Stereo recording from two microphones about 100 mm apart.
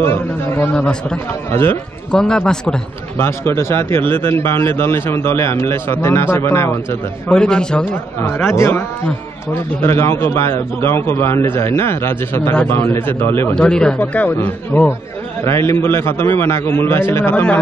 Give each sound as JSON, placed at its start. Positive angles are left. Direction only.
{"t": 0.0, "sound": "a man's voice", "side_deg": 25}
{"t": 0.7, "sound": "speech", "side_deg": 10}
{"t": 1.5, "sound": "a man's voice", "side_deg": 25}
{"t": 2.1, "sound": "speech", "side_deg": 5}
{"t": 3.2, "sound": "a man's voice", "side_deg": 25}
{"t": 7.2, "sound": "speech", "side_deg": 10}
{"t": 8.2, "sound": "a man's voice", "side_deg": 25}
{"t": 9.8, "sound": "a man's voice", "side_deg": 25}
{"t": 13.6, "sound": "speech", "side_deg": 10}
{"t": 13.9, "sound": "a man's voice", "side_deg": 20}